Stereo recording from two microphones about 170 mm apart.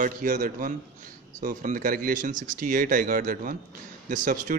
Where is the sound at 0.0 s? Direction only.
55° right (ahead or behind).